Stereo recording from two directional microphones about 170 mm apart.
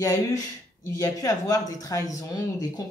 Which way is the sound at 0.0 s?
20° left (ahead or behind).